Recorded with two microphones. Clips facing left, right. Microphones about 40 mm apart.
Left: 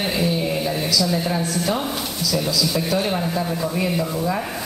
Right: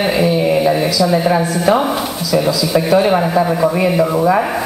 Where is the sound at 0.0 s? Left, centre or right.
Right.